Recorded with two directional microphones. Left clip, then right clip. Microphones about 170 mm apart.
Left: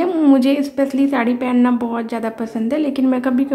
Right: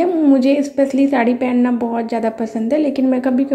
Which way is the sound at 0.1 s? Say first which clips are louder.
Even; 10° left (ahead or behind).